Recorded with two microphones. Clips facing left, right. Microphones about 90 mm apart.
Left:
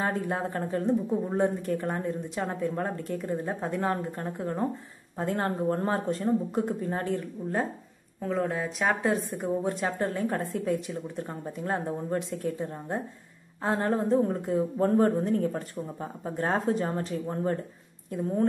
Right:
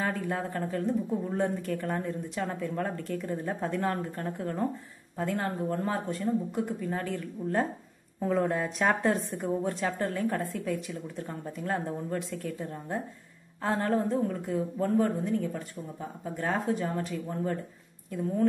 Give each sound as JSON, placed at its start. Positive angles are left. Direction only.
{"t": 0.0, "sound": "speech", "side_deg": 30}
{"t": 8.2, "sound": "speech", "side_deg": 0}
{"t": 9.4, "sound": "speech", "side_deg": 20}